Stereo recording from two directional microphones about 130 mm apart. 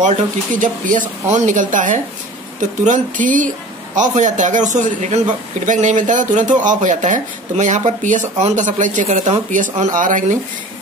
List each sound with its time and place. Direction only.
0.0 s speech: 75° right (ahead or behind)
3.9 s speech: 75° right (ahead or behind)
9.9 s speech: 85° right